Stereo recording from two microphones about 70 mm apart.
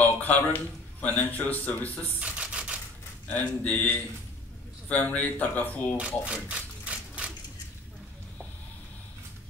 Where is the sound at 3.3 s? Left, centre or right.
Left.